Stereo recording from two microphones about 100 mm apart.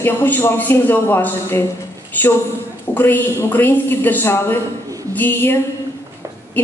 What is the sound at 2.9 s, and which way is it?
Mantra, 20° left (ahead or behind).